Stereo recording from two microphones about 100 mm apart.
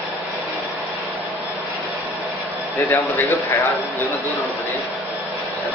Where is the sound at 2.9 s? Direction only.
25° left (ahead or behind).